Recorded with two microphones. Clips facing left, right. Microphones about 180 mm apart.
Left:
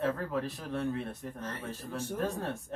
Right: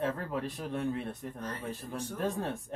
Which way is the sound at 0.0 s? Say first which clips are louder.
Left 1 dB; 15° right (ahead or behind).